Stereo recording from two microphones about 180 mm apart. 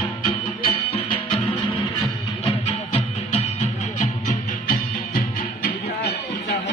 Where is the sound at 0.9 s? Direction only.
30° left (ahead or behind).